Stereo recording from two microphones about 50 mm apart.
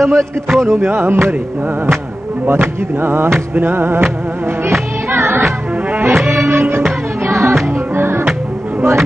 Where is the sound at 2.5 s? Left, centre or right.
Right.